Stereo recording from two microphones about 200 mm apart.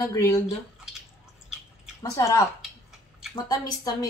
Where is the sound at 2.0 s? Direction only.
15° left (ahead or behind).